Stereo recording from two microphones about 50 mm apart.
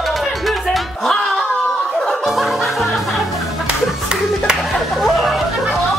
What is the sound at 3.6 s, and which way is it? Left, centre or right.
Clapping, centre.